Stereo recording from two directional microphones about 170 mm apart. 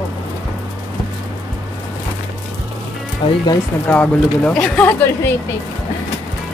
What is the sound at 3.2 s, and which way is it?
Speech, 30° left (ahead or behind).